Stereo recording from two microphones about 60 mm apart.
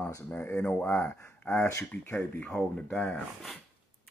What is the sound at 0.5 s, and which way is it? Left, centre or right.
Speech, centre.